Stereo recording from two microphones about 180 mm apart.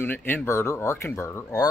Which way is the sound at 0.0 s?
10° left (ahead or behind).